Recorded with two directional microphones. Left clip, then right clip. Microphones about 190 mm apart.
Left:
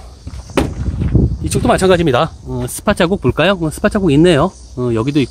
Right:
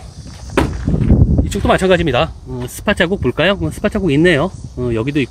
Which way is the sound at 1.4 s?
20° left (ahead or behind).